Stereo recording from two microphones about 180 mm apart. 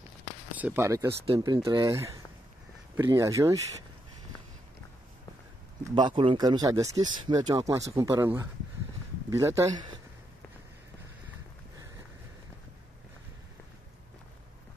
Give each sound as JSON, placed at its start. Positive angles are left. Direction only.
{"t": 0.6, "sound": "speech", "side_deg": -10}
{"t": 1.2, "sound": "speech", "side_deg": -25}
{"t": 5.9, "sound": "speech", "side_deg": -25}